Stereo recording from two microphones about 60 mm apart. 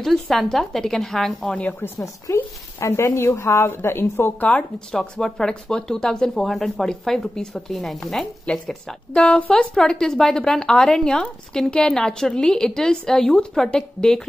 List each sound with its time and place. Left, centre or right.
0.0 s a woman's voice: centre
1.8 s speech: left
4.4 s speech: centre